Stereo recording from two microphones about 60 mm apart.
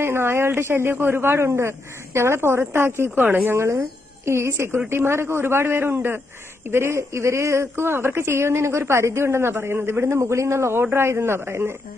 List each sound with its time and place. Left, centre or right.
0.0 s speech: right
3.5 s speech: right